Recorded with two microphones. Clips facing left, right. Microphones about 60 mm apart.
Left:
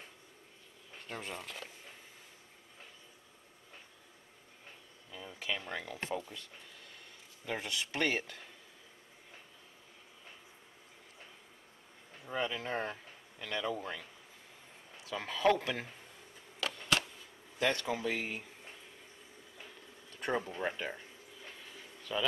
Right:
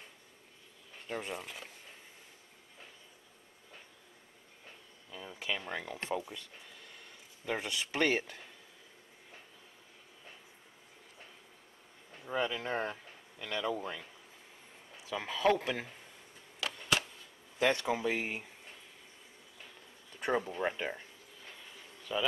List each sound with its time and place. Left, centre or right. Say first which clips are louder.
1.0 s speech: right 3 dB; centre
5.1 s speech: right 1 dB; centre
7.4 s speech: right 2 dB; centre
12.3 s speech: right 2 dB; centre
12.9 s a sound: right 1 dB; centre
15.0 s speech: even; centre
16.5 s a sound: even; centre
17.6 s speech: right 3 dB; centre
20.2 s speech: right 2 dB; centre
21.6 s pigeon: right 1 dB; centre